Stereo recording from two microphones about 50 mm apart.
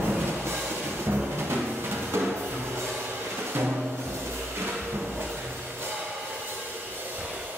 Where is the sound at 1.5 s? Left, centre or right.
Right.